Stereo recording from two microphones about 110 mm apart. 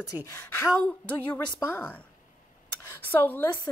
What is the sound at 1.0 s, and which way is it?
Speech, 15° left (ahead or behind).